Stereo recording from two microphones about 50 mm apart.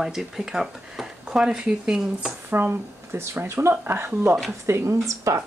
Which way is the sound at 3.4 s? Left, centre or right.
Right.